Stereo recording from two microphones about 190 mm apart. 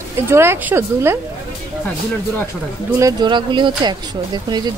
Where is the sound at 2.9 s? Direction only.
20° right (ahead or behind).